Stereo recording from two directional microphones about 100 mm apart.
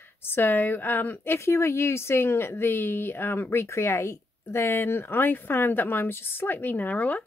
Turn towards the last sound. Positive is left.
turn(degrees=15)  # may be behind; listen again after turning